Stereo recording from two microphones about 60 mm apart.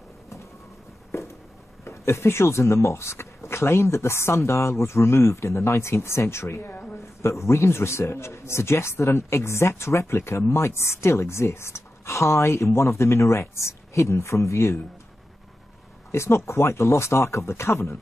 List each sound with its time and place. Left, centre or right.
1.9 s speech: left
6.7 s a sound: left
7.0 s speech: left
16.1 s speech: left